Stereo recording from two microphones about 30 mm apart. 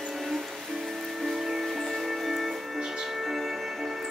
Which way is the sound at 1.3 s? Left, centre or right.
Centre.